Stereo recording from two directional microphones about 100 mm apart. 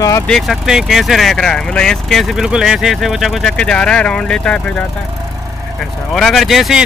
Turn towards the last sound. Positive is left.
turn(degrees=0)  # may be behind; listen again after turning